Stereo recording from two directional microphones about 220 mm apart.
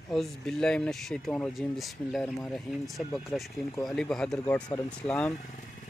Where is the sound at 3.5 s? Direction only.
15° left (ahead or behind).